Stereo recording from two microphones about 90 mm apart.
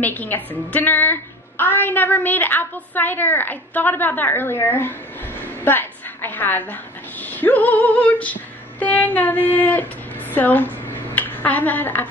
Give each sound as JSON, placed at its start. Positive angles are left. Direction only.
{"t": 0.0, "sound": "a woman's voice", "side_deg": 20}